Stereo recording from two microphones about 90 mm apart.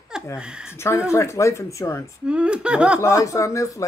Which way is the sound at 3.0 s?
35° left (ahead or behind).